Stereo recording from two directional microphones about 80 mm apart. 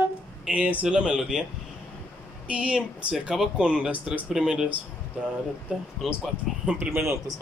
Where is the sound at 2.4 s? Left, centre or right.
Centre.